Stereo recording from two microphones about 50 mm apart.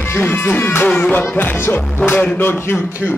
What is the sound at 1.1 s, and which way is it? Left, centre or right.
Music, left.